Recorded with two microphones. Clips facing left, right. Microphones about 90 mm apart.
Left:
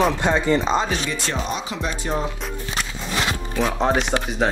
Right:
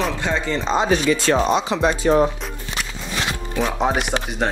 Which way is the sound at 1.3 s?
90° right.